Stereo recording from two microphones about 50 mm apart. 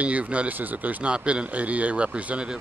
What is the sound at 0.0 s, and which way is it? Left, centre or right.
Speech, right.